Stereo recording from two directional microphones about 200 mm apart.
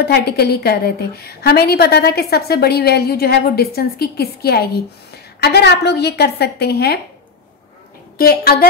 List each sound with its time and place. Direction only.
0.0 s a woman's voice: 55° left (ahead or behind)
8.2 s a woman's voice: 50° left (ahead or behind)